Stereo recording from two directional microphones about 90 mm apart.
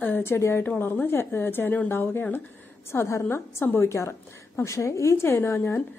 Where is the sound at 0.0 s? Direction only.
25° left (ahead or behind).